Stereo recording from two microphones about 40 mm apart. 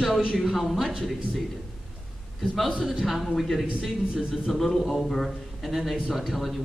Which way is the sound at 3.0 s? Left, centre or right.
Centre.